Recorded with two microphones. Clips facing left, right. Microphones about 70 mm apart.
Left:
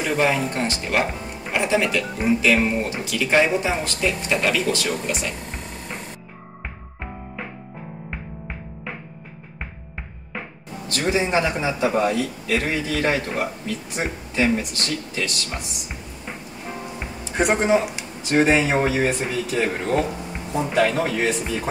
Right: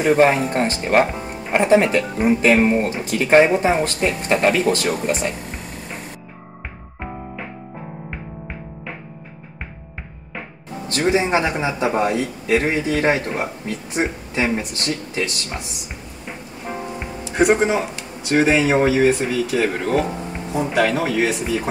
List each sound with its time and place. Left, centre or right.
0.0 s speech: right
10.9 s speech: right
17.0 s music: centre
18.3 s speech: centre